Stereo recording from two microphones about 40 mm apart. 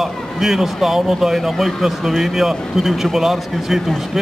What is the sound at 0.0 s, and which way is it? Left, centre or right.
A man's voice, centre.